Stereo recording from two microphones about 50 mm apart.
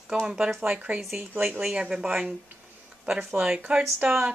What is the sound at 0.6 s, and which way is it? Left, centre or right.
Speech, right.